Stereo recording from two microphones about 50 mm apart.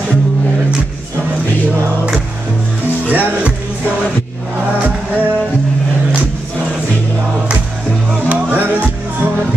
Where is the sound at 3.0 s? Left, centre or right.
Right.